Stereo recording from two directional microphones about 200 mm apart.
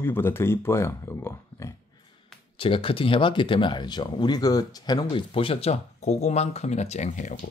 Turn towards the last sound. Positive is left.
turn(degrees=35)  # may be behind; listen again after turning